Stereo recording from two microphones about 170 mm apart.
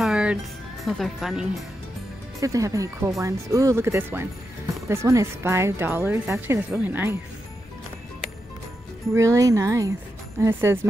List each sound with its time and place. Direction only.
0.0 s music: 5° right (ahead or behind)
0.8 s speech: centre (ahead or behind)
2.4 s speech: 20° right (ahead or behind)
9.1 s speech: 15° right (ahead or behind)